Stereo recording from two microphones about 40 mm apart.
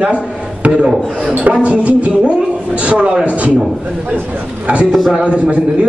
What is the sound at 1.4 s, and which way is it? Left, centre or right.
Speech, right.